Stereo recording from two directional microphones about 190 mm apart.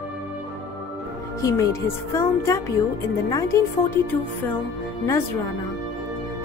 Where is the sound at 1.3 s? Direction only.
15° left (ahead or behind).